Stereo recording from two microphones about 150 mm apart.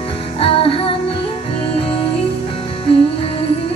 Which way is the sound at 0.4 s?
35° left (ahead or behind).